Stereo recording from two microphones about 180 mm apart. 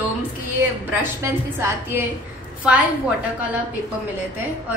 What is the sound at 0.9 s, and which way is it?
Speech, 10° right (ahead or behind).